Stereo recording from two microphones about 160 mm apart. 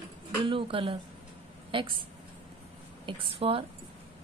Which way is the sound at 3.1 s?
35° right (ahead or behind).